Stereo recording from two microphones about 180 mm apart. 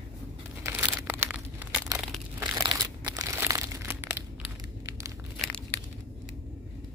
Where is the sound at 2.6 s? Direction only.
25° right (ahead or behind).